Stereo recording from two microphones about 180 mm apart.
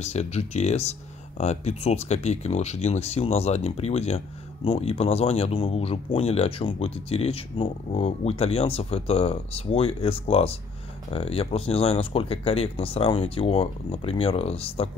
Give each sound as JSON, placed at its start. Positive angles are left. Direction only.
{"t": 0.0, "sound": "speech", "side_deg": 35}